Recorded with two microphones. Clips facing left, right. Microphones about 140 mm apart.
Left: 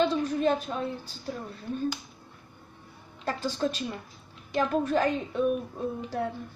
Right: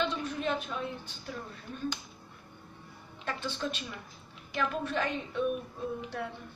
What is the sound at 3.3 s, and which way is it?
A woman's voice, 40° left (ahead or behind).